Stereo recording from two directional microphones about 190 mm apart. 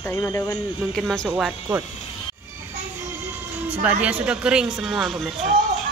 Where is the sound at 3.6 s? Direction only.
5° right (ahead or behind).